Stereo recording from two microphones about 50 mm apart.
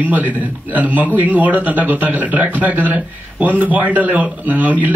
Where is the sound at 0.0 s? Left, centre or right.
Right.